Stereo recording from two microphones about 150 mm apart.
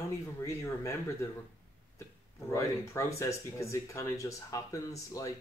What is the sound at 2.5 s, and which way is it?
Speech, 20° left (ahead or behind).